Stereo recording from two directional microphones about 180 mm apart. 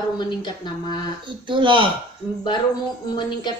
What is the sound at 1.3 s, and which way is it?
Speech, 25° right (ahead or behind).